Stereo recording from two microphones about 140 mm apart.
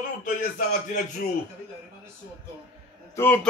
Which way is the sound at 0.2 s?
65° left (ahead or behind).